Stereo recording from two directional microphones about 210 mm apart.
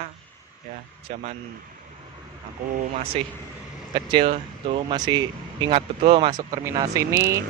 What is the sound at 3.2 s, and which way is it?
Speech, 25° right (ahead or behind).